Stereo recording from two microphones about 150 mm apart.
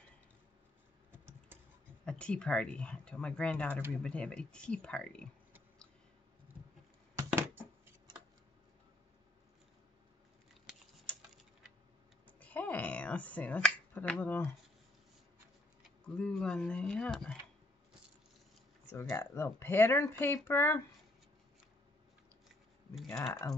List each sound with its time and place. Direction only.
2.0 s speech: 5° left (ahead or behind)
7.2 s a sound: 15° right (ahead or behind)
12.3 s finger snapping: 10° left (ahead or behind)
16.0 s speech: 5° left (ahead or behind)
18.9 s speech: 15° left (ahead or behind)